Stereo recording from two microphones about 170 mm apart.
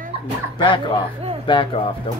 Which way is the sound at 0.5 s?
30° left (ahead or behind).